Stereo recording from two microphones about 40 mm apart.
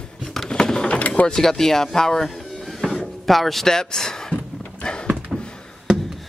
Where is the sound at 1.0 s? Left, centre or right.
Left.